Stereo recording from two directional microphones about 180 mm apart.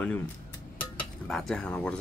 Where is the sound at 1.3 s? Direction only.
5° left (ahead or behind).